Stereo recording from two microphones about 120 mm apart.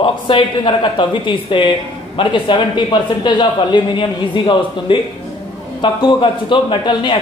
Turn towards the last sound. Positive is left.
turn(degrees=40)  # may be behind; listen again after turning